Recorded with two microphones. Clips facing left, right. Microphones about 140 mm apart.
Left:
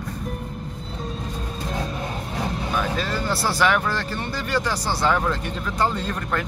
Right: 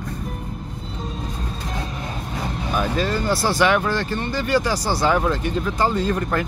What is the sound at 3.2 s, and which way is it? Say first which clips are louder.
Speech: right 2 dB; centre (ahead or behind).